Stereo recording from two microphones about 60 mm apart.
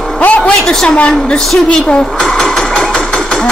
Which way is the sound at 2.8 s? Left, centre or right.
Centre.